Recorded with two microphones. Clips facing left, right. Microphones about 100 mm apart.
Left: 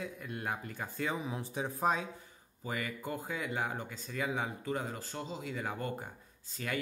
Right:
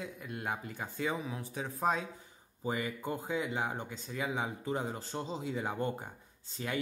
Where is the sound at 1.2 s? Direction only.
20° left (ahead or behind).